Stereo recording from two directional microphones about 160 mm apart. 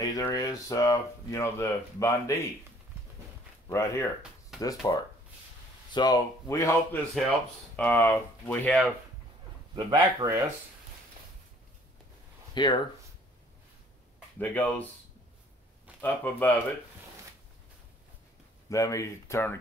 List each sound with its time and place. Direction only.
0.0 s speech: 20° left (ahead or behind)
3.6 s speech: 20° left (ahead or behind)
9.8 s speech: 25° right (ahead or behind)
12.5 s speech: 25° left (ahead or behind)
14.4 s speech: 10° left (ahead or behind)
16.0 s speech: 10° left (ahead or behind)
18.7 s speech: 20° left (ahead or behind)